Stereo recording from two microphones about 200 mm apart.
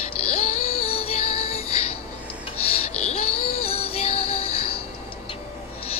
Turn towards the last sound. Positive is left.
turn(degrees=30)  # may be behind; listen again after turning